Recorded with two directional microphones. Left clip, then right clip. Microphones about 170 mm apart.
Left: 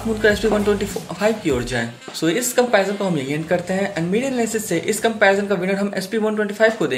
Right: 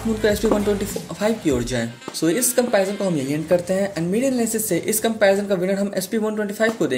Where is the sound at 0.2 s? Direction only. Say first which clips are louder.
Left 2 dB; 35° right (ahead or behind).